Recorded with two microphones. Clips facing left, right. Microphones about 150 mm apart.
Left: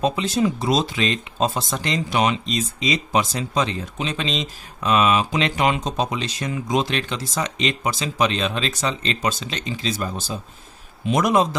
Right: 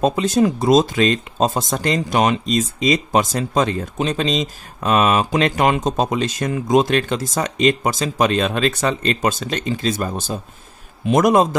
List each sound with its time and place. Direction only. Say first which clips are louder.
0.0 s speech: right 4 dB; 45° right (ahead or behind)